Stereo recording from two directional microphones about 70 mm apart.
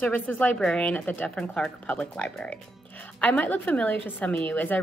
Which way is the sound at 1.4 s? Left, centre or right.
Centre.